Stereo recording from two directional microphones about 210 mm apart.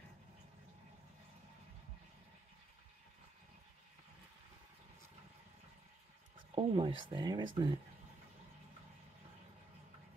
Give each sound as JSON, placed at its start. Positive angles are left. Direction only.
{"t": 6.5, "sound": "speech", "side_deg": -25}